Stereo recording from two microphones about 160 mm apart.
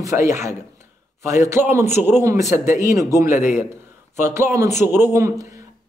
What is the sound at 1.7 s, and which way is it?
Speech, 15° right (ahead or behind).